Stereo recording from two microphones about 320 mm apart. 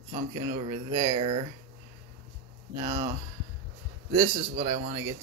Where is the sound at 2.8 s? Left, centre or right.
Centre.